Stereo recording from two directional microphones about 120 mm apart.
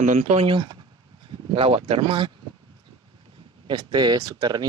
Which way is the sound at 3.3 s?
40° right (ahead or behind).